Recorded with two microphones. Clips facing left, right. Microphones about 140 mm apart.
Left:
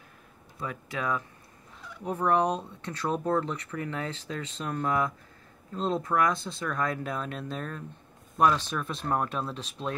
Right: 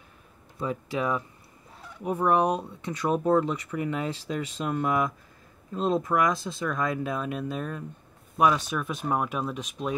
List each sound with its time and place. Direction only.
0.6 s speech: 20° right (ahead or behind)